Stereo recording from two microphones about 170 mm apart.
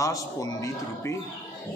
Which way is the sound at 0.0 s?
20° left (ahead or behind).